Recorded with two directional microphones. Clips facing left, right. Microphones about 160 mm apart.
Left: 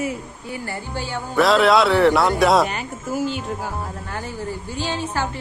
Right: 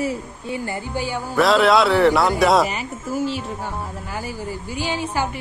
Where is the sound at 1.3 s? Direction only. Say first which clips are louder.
Even; centre (ahead or behind).